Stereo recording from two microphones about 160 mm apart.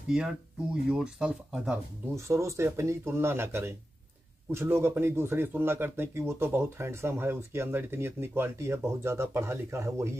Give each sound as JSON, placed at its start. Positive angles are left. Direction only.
{"t": 0.1, "sound": "speech", "side_deg": -5}
{"t": 2.1, "sound": "speech", "side_deg": -20}